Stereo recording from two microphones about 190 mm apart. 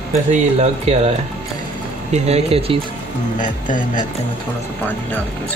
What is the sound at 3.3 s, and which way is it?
Speech, 45° left (ahead or behind).